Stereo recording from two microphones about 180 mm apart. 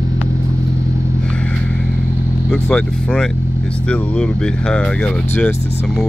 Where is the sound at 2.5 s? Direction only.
5° left (ahead or behind).